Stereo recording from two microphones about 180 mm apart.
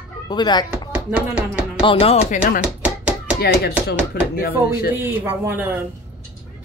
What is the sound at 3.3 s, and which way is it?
Speech, 65° left (ahead or behind).